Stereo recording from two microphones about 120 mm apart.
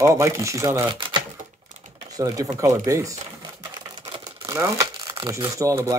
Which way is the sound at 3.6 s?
35° right (ahead or behind).